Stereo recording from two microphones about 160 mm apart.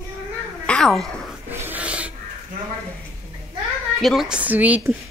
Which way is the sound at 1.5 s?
15° right (ahead or behind).